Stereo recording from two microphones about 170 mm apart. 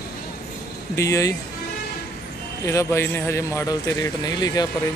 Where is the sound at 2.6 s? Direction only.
15° left (ahead or behind).